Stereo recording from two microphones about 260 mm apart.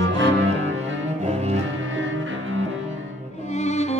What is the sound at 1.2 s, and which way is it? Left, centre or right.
Music, right.